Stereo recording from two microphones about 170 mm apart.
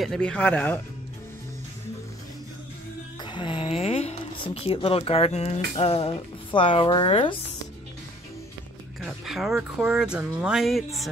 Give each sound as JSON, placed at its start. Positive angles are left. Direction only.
{"t": 0.0, "sound": "speech", "side_deg": 5}
{"t": 3.3, "sound": "speech", "side_deg": 30}
{"t": 9.0, "sound": "speech", "side_deg": 0}